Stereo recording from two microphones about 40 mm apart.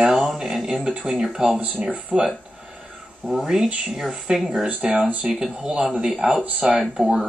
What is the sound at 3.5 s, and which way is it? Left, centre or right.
Speech, centre.